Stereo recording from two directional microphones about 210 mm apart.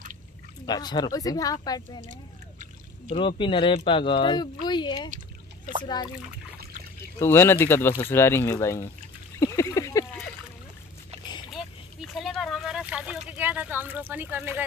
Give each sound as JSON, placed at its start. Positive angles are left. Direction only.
{"t": 0.7, "sound": "speech", "side_deg": 20}
{"t": 3.1, "sound": "speech", "side_deg": 25}
{"t": 7.2, "sound": "speech", "side_deg": 10}
{"t": 9.4, "sound": "a sound", "side_deg": 15}
{"t": 11.5, "sound": "boat", "side_deg": 0}